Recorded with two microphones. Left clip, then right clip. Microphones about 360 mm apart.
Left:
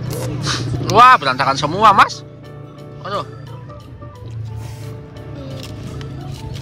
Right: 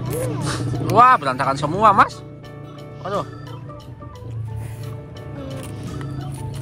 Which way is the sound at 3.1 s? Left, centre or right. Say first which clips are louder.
Left 1 dB; centre.